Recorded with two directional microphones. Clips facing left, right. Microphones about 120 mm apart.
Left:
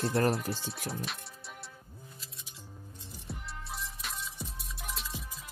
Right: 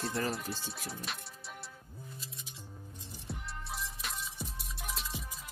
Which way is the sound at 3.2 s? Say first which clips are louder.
Even; centre (ahead or behind).